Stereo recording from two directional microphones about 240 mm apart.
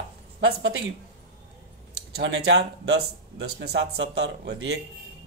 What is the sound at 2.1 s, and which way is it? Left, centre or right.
Speech, right.